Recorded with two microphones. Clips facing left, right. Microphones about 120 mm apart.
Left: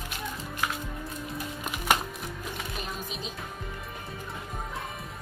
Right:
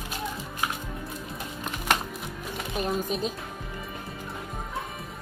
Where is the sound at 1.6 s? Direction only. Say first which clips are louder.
Even; 10° left (ahead or behind).